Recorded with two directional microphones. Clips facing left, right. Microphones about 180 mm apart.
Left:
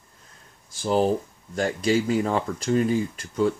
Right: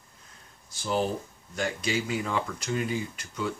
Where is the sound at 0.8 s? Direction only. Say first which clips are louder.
Left 6 dB; 35° left (ahead or behind).